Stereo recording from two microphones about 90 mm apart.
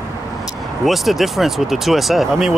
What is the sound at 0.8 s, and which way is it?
Speech, centre (ahead or behind).